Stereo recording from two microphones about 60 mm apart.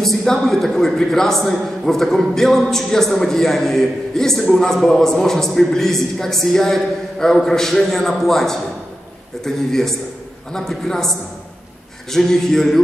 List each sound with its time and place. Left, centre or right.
0.0 s a man's voice: centre